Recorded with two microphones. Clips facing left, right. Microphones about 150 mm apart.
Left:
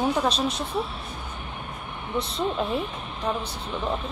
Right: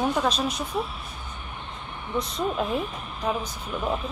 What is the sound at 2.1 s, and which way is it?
Speech, 30° left (ahead or behind).